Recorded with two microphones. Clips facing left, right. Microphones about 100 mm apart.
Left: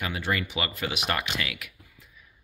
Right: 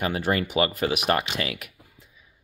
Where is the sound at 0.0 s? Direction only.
40° right (ahead or behind).